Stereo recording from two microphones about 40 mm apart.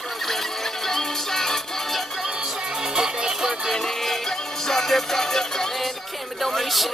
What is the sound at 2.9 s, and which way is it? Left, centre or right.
Music, centre.